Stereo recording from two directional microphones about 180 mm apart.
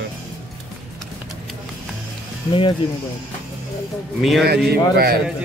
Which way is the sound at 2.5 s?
30° left (ahead or behind).